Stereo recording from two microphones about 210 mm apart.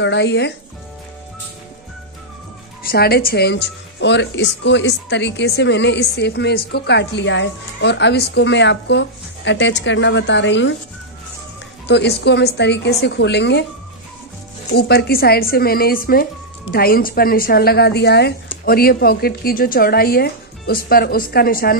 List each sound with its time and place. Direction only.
0.0 s a woman's voice: 55° left (ahead or behind)
2.8 s a woman's voice: 45° left (ahead or behind)
11.9 s a woman's voice: 55° left (ahead or behind)
14.7 s a woman's voice: 50° left (ahead or behind)